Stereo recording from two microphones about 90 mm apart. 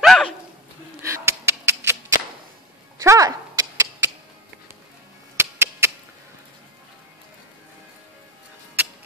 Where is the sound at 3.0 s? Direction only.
40° right (ahead or behind).